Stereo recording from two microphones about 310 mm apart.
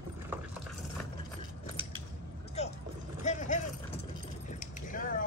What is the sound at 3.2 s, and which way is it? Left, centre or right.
Clip-clop, left.